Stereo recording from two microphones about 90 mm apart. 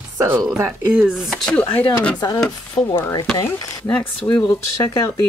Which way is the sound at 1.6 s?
70° left (ahead or behind).